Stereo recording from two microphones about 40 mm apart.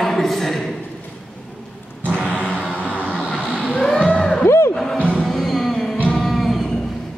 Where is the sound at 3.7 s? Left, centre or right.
Left.